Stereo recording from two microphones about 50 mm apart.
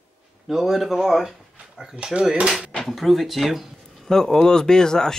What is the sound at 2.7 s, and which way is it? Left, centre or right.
Speech, centre.